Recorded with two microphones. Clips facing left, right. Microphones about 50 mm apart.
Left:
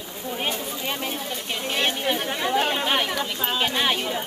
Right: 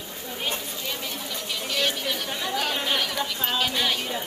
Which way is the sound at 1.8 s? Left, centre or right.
Left.